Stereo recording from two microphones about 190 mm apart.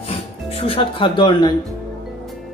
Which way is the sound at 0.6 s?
30° left (ahead or behind).